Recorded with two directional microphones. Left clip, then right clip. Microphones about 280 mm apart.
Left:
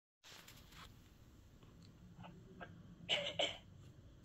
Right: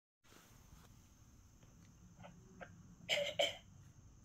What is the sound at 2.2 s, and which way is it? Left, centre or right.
Cough, centre.